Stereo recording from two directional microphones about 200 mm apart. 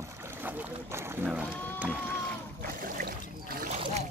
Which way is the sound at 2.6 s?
45° right (ahead or behind).